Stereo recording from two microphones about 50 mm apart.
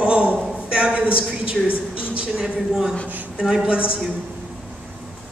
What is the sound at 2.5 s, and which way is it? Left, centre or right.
A man's voice, centre.